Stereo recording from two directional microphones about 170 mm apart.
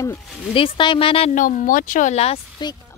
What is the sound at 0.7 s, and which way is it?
Speech, 30° left (ahead or behind).